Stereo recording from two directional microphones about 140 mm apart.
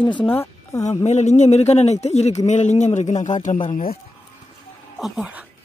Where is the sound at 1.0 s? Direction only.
55° left (ahead or behind).